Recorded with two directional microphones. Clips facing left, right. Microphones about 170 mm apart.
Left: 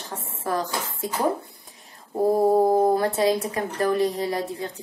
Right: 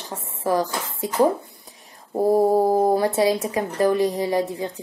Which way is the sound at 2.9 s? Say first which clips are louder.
Right 2 dB; 15° right (ahead or behind).